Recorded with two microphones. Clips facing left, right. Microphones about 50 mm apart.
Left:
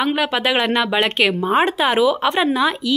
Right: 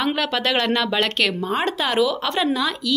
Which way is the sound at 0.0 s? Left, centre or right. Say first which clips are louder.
Left 3 dB; centre.